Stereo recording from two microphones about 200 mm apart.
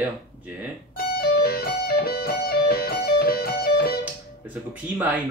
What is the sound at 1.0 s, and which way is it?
Music, 50° left (ahead or behind).